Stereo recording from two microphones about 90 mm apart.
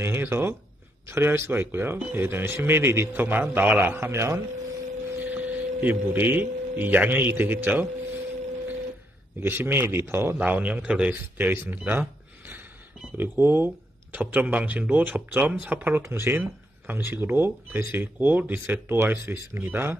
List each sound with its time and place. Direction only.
0.0 s speech: 30° right (ahead or behind)
5.2 s speech: 20° right (ahead or behind)
9.4 s speech: 25° right (ahead or behind)
10.3 s speech: 15° right (ahead or behind)
11.3 s speech: 20° right (ahead or behind)